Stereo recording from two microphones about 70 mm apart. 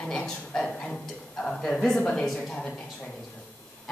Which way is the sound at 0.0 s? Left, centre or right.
Centre.